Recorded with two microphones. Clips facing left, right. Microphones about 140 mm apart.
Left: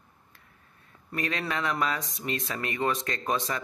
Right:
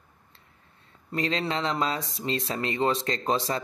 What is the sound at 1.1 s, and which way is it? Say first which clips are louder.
Speech: right 3 dB; 25° right (ahead or behind).